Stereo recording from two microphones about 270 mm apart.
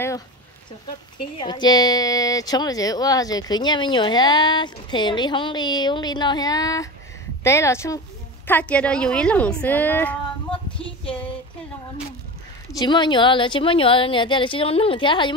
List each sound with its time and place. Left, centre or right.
1.4 s a woman's voice: centre
12.7 s speech: centre